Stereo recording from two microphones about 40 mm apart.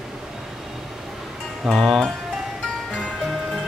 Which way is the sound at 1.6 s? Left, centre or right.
Centre.